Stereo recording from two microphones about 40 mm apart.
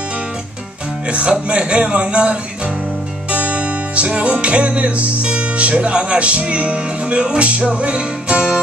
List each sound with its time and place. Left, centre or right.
1.0 s music: right